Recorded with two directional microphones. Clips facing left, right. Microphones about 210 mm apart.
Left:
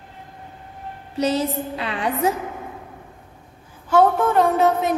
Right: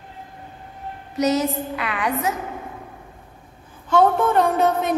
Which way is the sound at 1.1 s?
30° left (ahead or behind).